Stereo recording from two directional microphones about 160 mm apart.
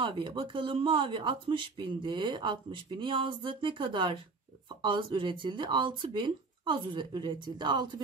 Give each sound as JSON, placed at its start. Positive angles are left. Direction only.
{"t": 0.0, "sound": "speech", "side_deg": -30}